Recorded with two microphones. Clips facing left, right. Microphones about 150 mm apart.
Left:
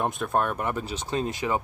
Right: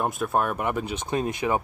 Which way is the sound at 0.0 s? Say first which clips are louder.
Right 1 dB; 5° right (ahead or behind).